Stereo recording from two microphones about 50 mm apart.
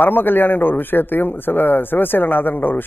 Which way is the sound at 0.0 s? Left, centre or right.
Left.